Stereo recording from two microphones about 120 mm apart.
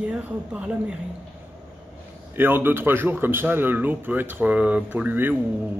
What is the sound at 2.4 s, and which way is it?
Speech, 15° right (ahead or behind).